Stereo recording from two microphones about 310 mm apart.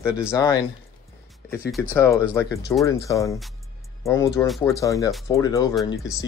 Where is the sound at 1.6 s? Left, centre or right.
Centre.